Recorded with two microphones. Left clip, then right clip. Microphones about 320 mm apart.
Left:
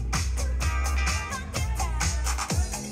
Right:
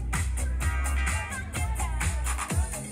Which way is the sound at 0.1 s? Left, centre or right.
Left.